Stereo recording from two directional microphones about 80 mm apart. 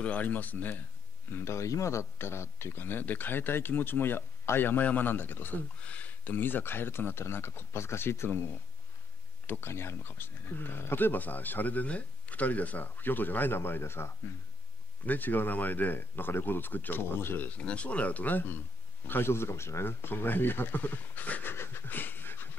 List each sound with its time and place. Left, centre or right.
0.0 s speech: centre
1.3 s speech: left
9.5 s speech: left